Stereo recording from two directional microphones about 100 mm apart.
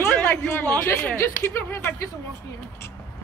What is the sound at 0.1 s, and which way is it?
Chatter, 5° left (ahead or behind).